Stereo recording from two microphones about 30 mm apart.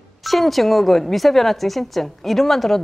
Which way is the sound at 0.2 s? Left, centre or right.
Centre.